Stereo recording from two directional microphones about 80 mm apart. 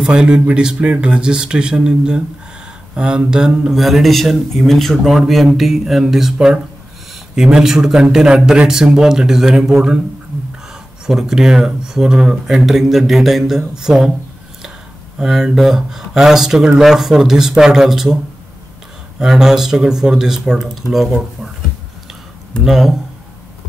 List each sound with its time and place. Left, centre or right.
0.0 s speech: centre
11.1 s speech: centre
15.1 s speech: centre
19.1 s speech: centre
22.7 s speech: centre